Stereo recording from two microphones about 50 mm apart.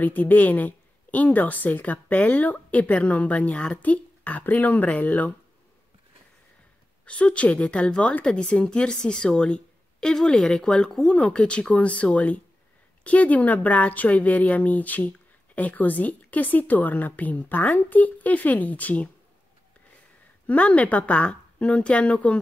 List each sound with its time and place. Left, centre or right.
0.0 s speech: left
7.1 s a woman's voice: left
11.1 s a woman's voice: left
20.4 s a woman's voice: left